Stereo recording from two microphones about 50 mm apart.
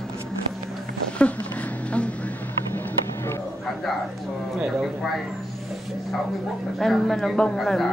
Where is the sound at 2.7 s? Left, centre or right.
Left.